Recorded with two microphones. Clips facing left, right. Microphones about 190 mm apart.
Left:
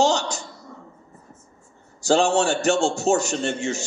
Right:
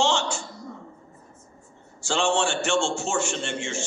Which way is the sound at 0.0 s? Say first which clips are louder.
Left 4 dB; 40° left (ahead or behind).